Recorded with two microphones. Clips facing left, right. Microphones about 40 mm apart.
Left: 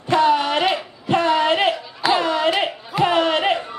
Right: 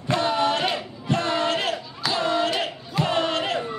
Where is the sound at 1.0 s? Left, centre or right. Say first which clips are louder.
Left 6 dB; left.